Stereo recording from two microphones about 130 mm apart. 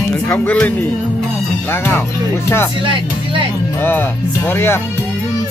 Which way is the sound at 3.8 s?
15° left (ahead or behind).